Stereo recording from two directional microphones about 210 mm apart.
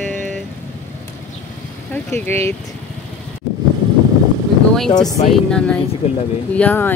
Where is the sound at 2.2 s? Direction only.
10° left (ahead or behind).